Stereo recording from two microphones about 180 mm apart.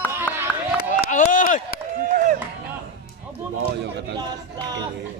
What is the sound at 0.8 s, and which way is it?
Chop, 45° left (ahead or behind).